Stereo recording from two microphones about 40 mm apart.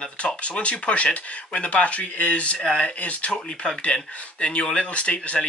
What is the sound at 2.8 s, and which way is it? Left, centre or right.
Speech, left.